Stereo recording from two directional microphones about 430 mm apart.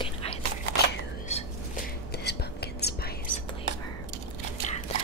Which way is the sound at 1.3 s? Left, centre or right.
Centre.